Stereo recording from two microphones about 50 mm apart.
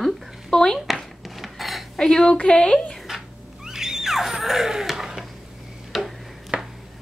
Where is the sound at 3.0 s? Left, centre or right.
Centre.